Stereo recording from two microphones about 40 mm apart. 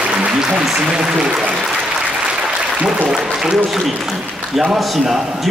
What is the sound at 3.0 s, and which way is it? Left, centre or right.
Applause, centre.